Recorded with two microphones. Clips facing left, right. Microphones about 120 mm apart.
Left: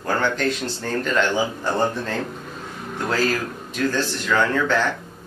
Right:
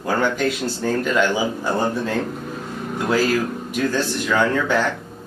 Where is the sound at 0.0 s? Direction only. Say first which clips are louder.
Right 2 dB; 10° right (ahead or behind).